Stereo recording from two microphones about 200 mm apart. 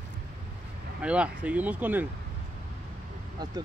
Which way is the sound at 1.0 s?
5° right (ahead or behind).